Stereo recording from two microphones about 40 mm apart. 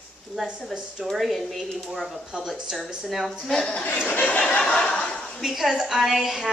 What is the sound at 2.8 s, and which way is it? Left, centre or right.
Speech, centre.